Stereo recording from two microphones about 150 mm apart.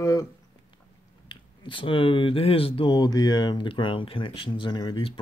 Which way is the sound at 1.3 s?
35° left (ahead or behind).